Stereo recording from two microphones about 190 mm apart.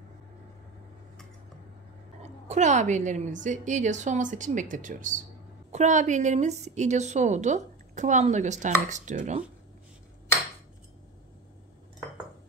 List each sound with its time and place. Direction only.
2.2 s a woman's voice: 35° right (ahead or behind)